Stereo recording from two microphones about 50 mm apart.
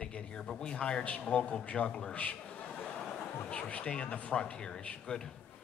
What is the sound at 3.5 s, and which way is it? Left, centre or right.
A man's voice, left.